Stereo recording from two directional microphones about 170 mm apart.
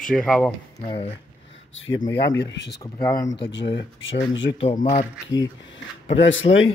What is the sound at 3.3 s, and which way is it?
Speech, 90° left.